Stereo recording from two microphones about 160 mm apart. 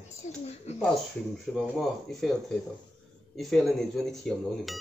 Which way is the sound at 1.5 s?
Centre (ahead or behind).